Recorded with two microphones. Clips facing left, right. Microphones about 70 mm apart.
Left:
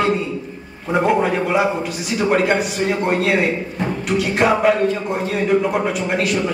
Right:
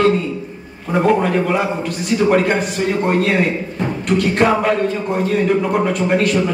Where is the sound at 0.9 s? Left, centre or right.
Centre.